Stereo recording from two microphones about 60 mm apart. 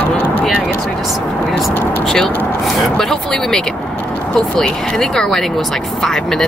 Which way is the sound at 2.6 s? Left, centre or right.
Centre.